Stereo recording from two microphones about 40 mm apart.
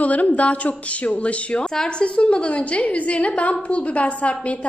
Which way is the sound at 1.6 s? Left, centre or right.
Centre.